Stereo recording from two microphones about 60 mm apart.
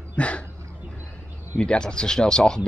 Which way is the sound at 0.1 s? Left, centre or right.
Left.